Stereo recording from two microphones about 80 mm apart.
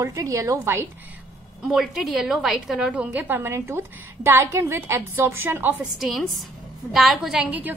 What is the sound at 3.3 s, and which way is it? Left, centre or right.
A woman's voice, right.